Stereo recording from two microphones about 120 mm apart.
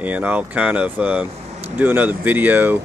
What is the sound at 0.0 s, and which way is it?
Speech, 15° right (ahead or behind).